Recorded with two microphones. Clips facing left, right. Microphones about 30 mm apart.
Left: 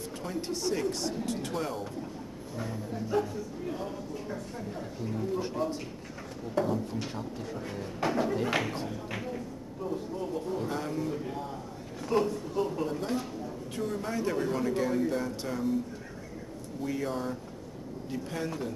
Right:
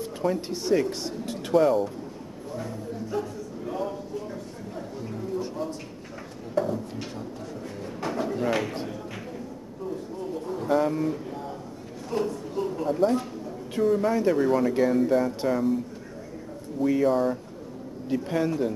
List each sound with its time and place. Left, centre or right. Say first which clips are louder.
0.2 s a man's voice: right 6 dB; centre
2.5 s speech: right 2 dB; centre
5.3 s speech: right 2 dB; centre
6.5 s speech: right 2 dB; centre
9.1 s a sound: left 1 dB; centre
9.8 s speech: right 1 dB; centre
10.7 s speech: right 9 dB; centre
11.2 s a man's voice: right 2 dB; centre
16.8 s a man's voice: right 11 dB; centre